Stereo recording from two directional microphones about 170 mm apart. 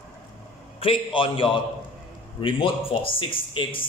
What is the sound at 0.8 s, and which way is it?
A man's voice, 30° left (ahead or behind).